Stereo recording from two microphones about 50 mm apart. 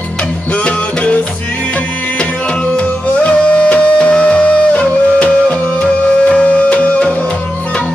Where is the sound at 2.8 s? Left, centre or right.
Left.